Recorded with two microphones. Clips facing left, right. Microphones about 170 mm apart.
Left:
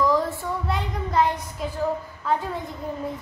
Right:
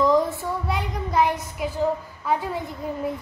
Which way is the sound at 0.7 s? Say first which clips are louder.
Even; 5° right (ahead or behind).